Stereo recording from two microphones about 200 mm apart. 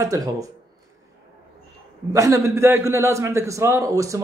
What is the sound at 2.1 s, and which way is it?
Speech, 15° right (ahead or behind).